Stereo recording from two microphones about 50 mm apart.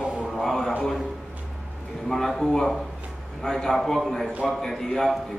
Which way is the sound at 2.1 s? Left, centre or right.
Centre.